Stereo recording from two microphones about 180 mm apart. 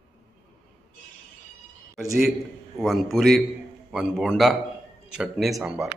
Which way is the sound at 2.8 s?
Centre (ahead or behind).